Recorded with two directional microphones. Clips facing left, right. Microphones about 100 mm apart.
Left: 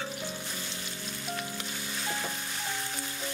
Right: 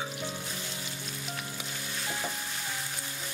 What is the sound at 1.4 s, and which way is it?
Sizzle, centre (ahead or behind).